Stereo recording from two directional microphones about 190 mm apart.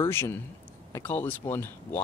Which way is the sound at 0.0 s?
15° left (ahead or behind).